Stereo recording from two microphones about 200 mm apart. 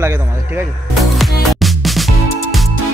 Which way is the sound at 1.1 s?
Centre (ahead or behind).